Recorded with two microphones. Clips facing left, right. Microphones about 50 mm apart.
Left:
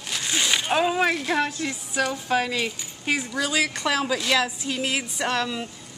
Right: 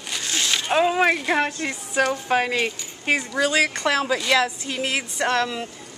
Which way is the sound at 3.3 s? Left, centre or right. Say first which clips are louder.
Right 4 dB; centre.